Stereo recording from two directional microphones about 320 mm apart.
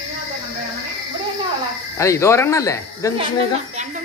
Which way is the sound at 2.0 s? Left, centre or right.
Centre.